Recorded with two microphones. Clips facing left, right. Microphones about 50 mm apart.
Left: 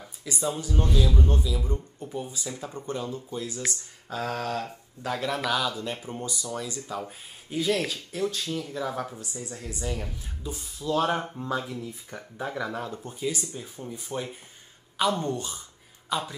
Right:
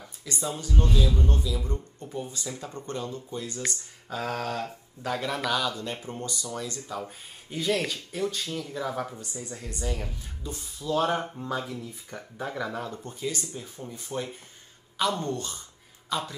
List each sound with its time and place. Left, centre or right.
0.0 s speech: centre
3.3 s speech: centre